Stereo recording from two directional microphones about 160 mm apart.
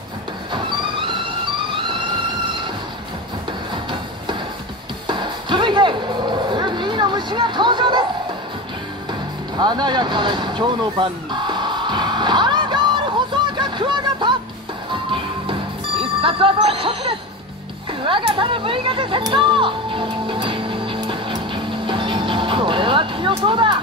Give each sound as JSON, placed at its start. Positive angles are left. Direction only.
{"t": 0.5, "sound": "vehicle", "side_deg": -30}
{"t": 1.8, "sound": "music", "side_deg": -30}
{"t": 5.0, "sound": "music", "side_deg": -30}
{"t": 9.6, "sound": "vehicle", "side_deg": -25}
{"t": 14.9, "sound": "music", "side_deg": -35}
{"t": 18.0, "sound": "speech", "side_deg": -35}